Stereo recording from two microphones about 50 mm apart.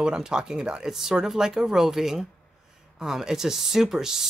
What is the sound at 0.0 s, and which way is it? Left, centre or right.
Speech, centre.